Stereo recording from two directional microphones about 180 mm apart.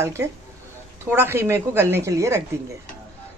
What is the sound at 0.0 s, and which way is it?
Speech, 15° right (ahead or behind).